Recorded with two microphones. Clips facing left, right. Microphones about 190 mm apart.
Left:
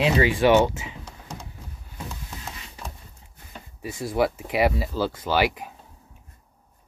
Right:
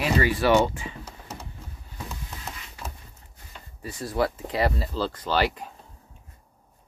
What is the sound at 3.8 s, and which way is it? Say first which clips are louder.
Speech: left 3 dB; 15° left (ahead or behind).